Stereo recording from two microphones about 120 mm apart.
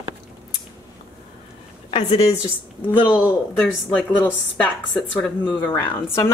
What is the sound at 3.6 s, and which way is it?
A woman's voice, 10° left (ahead or behind).